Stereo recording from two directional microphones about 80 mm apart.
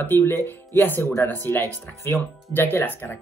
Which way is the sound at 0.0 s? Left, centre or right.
Left.